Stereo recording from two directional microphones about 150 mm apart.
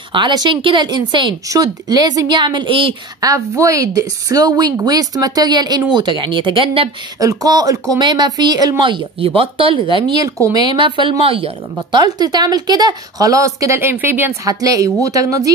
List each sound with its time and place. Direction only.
0.1 s speech: 30° right (ahead or behind)
3.2 s speech: 20° right (ahead or behind)
7.2 s speech: 25° right (ahead or behind)
12.0 s speech: 25° right (ahead or behind)